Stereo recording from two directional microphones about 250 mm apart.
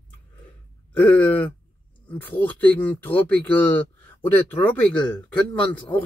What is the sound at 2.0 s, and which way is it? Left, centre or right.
Speech, centre.